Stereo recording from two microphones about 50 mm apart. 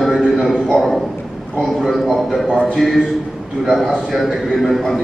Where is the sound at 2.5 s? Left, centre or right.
Left.